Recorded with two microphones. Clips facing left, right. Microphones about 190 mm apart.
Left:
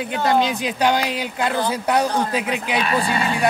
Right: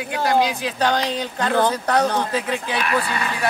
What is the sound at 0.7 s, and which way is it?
Speech, 10° left (ahead or behind).